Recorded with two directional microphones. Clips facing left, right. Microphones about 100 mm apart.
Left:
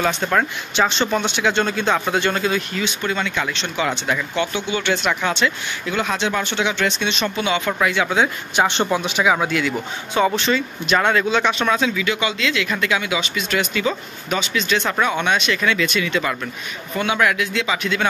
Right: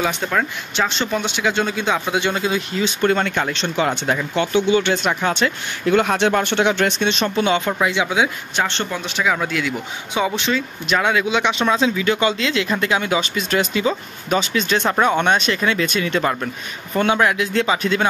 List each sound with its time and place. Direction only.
0.0 s speech: centre (ahead or behind); by 2.8 s 20° right (ahead or behind)
3.0 s speech: 50° right (ahead or behind)
7.8 s speech: 20° right (ahead or behind)
8.5 s speech: 15° left (ahead or behind)
10.1 s speech: 15° right (ahead or behind)
10.5 s speech: centre (ahead or behind); by 14.8 s 35° right (ahead or behind)
14.9 s speech: 20° right (ahead or behind)
15.1 s speech: 45° right (ahead or behind)